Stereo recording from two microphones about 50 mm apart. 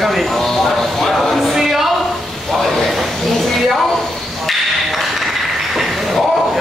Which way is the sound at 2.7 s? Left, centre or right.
Centre.